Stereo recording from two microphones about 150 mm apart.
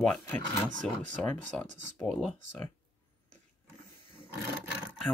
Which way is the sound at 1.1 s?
5° left (ahead or behind).